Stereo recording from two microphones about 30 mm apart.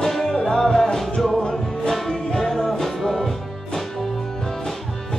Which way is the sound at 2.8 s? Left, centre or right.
Centre.